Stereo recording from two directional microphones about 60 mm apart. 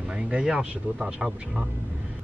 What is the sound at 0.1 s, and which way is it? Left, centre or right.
Speech, centre.